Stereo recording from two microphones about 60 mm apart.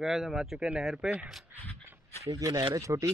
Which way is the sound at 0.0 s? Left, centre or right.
Centre.